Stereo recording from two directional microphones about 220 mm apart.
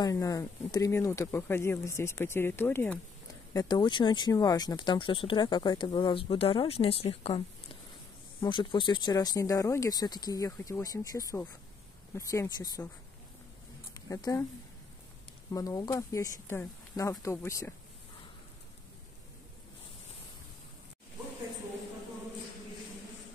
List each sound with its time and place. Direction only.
0.0 s speech: 15° left (ahead or behind)
13.9 s speech: 15° left (ahead or behind)
15.5 s speech: 15° left (ahead or behind)